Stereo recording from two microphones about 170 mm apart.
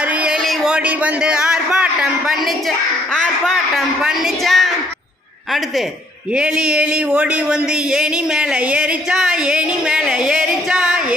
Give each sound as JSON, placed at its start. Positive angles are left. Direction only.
{"t": 0.2, "sound": "a sound", "side_deg": -5}
{"t": 3.2, "sound": "speech", "side_deg": 0}
{"t": 6.3, "sound": "speech", "side_deg": -5}